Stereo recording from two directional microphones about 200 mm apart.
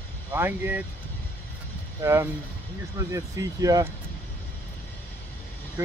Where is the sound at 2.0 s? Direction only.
15° right (ahead or behind).